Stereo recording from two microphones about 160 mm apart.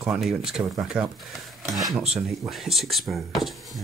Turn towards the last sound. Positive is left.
turn(degrees=0)  # may be behind; listen again after turning